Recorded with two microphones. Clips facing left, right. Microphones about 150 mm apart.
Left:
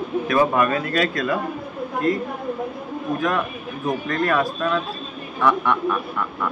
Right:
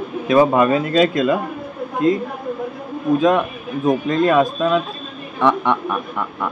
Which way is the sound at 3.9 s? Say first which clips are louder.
Right 6 dB; 20° right (ahead or behind).